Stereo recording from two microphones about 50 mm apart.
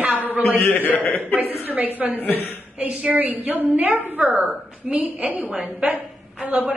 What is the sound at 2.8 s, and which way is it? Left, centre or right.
A woman's voice, right.